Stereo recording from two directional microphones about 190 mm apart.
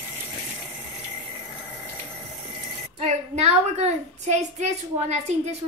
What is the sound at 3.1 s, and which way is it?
A woman's voice, 35° right (ahead or behind).